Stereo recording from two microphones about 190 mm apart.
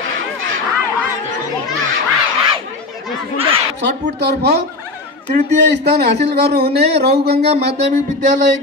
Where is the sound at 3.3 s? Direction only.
30° right (ahead or behind).